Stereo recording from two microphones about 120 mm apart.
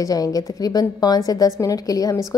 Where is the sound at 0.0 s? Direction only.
30° left (ahead or behind).